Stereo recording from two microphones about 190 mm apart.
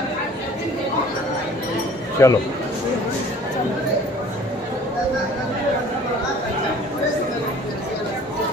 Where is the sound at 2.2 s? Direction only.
15° left (ahead or behind).